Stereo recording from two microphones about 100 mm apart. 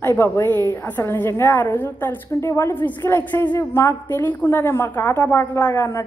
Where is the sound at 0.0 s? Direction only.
25° left (ahead or behind).